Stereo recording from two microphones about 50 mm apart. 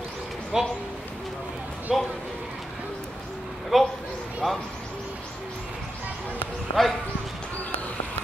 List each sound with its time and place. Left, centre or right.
0.5 s speech: centre
1.9 s speech: centre
3.7 s a sound: centre
6.8 s clip-clop: centre